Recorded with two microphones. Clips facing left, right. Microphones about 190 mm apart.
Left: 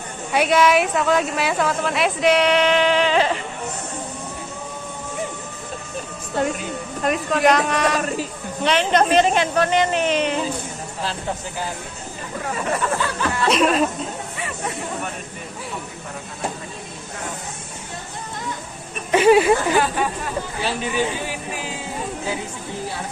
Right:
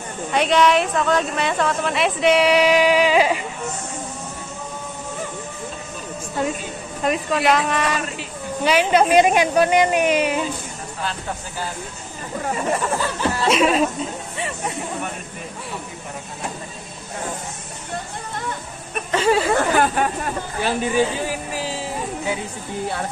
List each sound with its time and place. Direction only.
0.3 s a woman's voice: 5° left (ahead or behind)
7.0 s a woman's voice: centre (ahead or behind)
13.2 s a sound: 30° right (ahead or behind)
13.5 s a woman's voice: centre (ahead or behind)
19.1 s speech: 15° left (ahead or behind)
19.5 s speech: 55° right (ahead or behind)
20.6 s speech: 40° right (ahead or behind)